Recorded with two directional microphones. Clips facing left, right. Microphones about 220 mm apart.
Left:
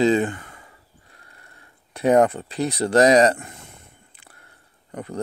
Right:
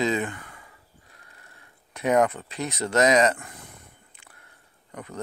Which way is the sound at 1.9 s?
30° left (ahead or behind).